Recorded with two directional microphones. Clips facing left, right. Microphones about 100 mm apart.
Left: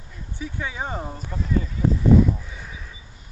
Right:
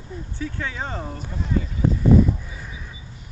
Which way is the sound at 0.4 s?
15° left (ahead or behind).